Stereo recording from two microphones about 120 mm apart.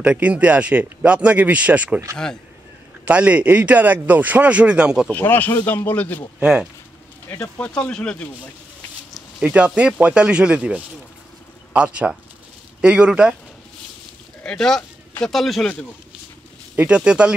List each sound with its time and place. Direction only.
0.0 s speech: 10° right (ahead or behind)
3.1 s speech: 10° right (ahead or behind)
5.1 s speech: 15° left (ahead or behind)
6.4 s speech: 5° right (ahead or behind)
7.2 s speech: 15° left (ahead or behind)
9.4 s speech: 10° right (ahead or behind)
14.4 s speech: 5° left (ahead or behind)
16.7 s speech: 10° right (ahead or behind)